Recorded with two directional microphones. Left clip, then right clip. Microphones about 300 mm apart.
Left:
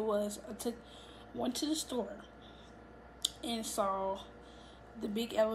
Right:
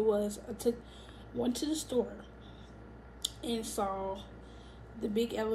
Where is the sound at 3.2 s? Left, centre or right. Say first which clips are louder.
Right 1 dB; centre.